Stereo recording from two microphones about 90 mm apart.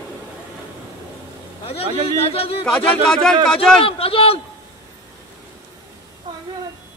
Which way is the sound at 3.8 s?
90° left.